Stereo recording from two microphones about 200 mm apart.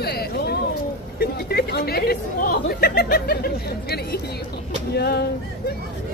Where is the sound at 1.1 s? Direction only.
50° left (ahead or behind).